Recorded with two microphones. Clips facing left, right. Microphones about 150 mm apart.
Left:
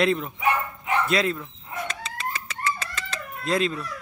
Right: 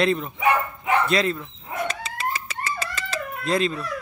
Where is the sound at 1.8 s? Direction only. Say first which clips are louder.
Right 5 dB; 5° right (ahead or behind).